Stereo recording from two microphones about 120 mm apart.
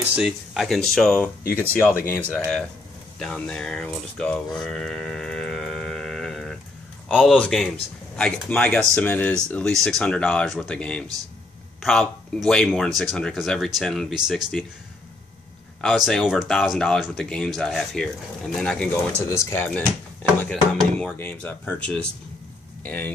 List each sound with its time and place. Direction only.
0.1 s a man's voice: 5° right (ahead or behind)
16.1 s speech: 5° right (ahead or behind)
19.2 s speech: 20° left (ahead or behind)
20.4 s speech: centre (ahead or behind)
21.2 s speech: 15° left (ahead or behind)